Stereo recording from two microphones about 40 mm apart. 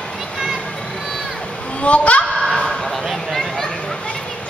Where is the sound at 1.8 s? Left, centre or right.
Left.